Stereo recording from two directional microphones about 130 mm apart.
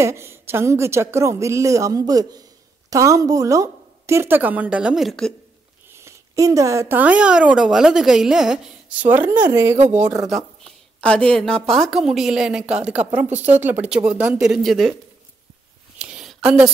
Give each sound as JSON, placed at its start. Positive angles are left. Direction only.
{"t": 0.0, "sound": "speech", "side_deg": -20}
{"t": 5.9, "sound": "speech", "side_deg": -20}
{"t": 11.0, "sound": "a woman's voice", "side_deg": 10}
{"t": 16.0, "sound": "a sound", "side_deg": -5}